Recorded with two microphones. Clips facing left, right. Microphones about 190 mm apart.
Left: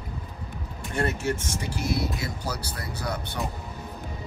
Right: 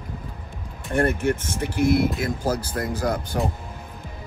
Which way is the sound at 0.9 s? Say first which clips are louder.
Right 6 dB; 55° right (ahead or behind).